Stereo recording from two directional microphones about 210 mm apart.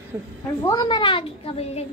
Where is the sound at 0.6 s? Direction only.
15° left (ahead or behind).